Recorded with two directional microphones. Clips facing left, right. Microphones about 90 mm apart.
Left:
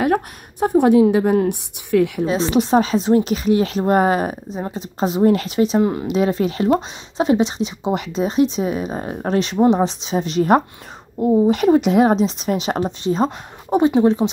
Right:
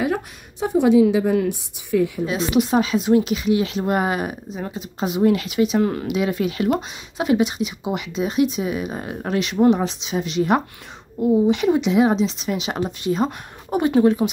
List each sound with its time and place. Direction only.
0.0 s a woman's voice: 55° left (ahead or behind)
1.5 s speech: 65° left (ahead or behind)
2.2 s speech: 35° left (ahead or behind)
5.8 s speech: 20° left (ahead or behind)
6.0 s speech: 35° left (ahead or behind)